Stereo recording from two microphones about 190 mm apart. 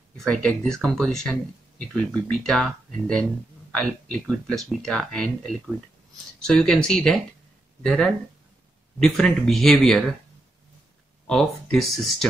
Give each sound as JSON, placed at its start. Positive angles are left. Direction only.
{"t": 0.2, "sound": "speech", "side_deg": 5}
{"t": 11.2, "sound": "speech", "side_deg": 0}